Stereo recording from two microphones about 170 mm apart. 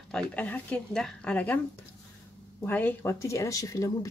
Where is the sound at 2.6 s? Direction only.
10° left (ahead or behind).